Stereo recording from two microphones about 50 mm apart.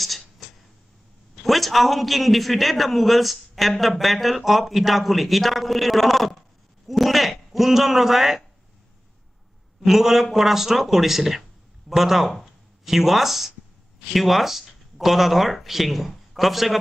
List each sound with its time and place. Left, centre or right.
0.4 s tick-tock: centre
1.4 s a man's voice: centre
9.8 s a man's voice: centre